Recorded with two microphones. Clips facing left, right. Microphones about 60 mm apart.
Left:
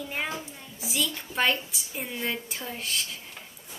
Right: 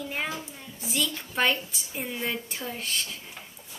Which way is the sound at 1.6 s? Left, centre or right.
Centre.